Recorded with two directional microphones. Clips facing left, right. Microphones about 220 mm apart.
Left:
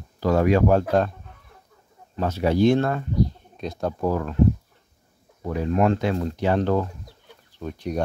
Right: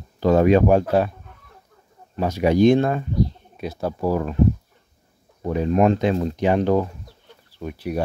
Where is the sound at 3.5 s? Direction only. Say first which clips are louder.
Right 1 dB; 5° right (ahead or behind).